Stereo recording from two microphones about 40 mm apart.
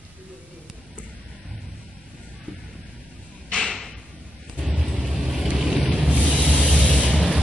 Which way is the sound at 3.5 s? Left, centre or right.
Left.